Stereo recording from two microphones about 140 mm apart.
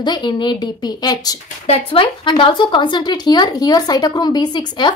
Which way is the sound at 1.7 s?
40° left (ahead or behind).